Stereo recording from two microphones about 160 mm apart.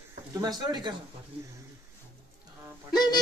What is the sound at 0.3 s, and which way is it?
Speech, 25° right (ahead or behind).